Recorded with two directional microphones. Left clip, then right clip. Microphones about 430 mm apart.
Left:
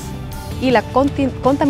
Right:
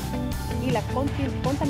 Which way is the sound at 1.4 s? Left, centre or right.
Centre.